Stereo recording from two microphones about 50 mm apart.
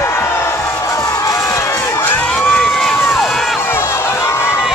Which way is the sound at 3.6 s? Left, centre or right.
Left.